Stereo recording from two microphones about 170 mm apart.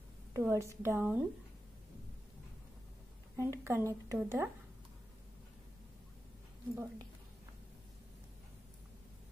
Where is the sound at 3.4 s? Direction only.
15° right (ahead or behind).